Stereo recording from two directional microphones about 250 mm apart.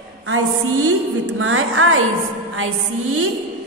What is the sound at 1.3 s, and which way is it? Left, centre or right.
Speech, right.